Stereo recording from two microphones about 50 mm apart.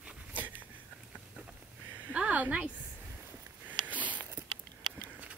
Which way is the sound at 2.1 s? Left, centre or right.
Right.